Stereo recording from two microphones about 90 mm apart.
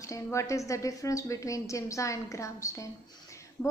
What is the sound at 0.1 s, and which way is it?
A woman's voice, 35° left (ahead or behind).